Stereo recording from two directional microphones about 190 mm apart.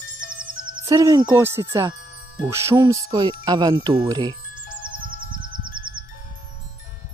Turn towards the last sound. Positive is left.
turn(degrees=-25)  # may be behind; listen again after turning